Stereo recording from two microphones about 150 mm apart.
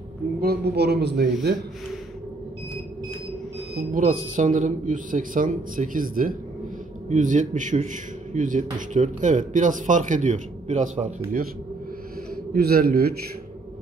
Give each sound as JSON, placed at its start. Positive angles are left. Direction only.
{"t": 0.4, "sound": "speech", "side_deg": -90}
{"t": 3.9, "sound": "a man's voice", "side_deg": -55}
{"t": 7.1, "sound": "a man's voice", "side_deg": -55}
{"t": 12.5, "sound": "speech", "side_deg": -90}